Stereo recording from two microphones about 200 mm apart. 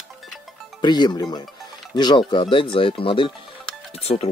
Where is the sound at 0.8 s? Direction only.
20° left (ahead or behind).